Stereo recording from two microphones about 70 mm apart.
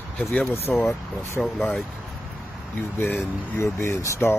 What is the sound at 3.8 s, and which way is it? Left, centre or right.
Speech, left.